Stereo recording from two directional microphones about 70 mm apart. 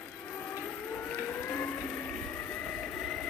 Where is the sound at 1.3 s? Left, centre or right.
Left.